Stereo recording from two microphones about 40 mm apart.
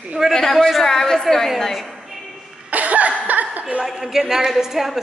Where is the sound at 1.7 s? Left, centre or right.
Centre.